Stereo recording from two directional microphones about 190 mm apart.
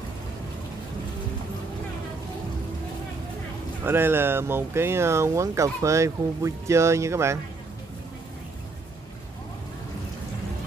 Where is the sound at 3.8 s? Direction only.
10° right (ahead or behind).